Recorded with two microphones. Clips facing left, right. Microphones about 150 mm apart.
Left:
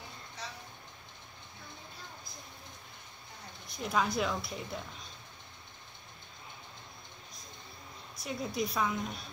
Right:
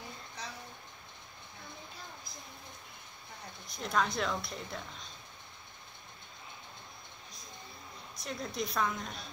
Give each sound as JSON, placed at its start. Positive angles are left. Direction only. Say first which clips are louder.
{"t": 3.7, "sound": "a woman's voice", "louder": "left 1 dB", "side_deg": 5}
{"t": 8.2, "sound": "a woman's voice", "louder": "left 3 dB", "side_deg": 5}